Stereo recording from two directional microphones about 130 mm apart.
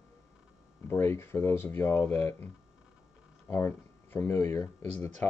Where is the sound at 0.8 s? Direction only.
20° left (ahead or behind).